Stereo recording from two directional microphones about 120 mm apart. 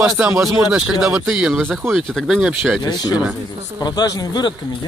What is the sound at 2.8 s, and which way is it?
Speech, 35° left (ahead or behind).